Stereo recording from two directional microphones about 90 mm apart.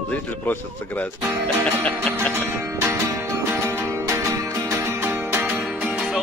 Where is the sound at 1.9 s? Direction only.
15° left (ahead or behind).